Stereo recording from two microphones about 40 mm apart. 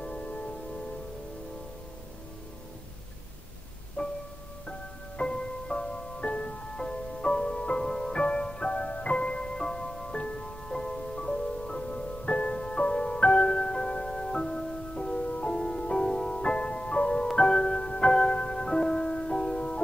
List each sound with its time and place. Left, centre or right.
0.0 s music: left
4.0 s music: left
13.5 s music: centre